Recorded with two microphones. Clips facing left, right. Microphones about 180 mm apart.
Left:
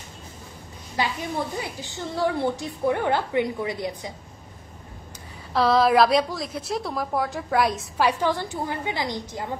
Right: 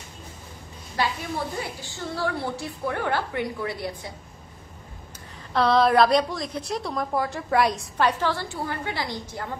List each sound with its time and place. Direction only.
1.6 s a woman's voice: 20° left (ahead or behind)
5.5 s a woman's voice: centre (ahead or behind)
8.2 s a woman's voice: 15° left (ahead or behind)